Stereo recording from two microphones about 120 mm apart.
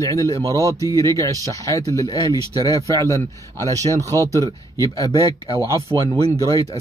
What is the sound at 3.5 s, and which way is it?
Speech, 30° right (ahead or behind).